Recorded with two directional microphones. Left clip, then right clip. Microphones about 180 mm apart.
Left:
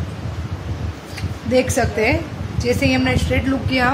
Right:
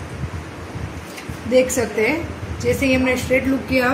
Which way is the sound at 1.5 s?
20° left (ahead or behind).